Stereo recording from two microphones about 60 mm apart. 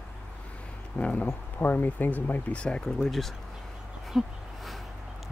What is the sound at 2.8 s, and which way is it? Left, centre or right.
Speech, centre.